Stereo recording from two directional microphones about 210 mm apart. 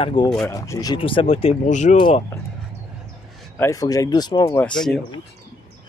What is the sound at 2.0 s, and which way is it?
Speech, 20° left (ahead or behind).